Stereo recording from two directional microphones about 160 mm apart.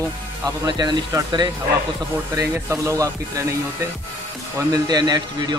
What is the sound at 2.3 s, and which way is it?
A man's voice, 15° right (ahead or behind).